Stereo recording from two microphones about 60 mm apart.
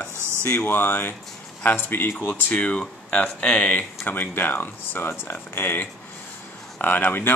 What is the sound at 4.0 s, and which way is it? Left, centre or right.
Speech, left.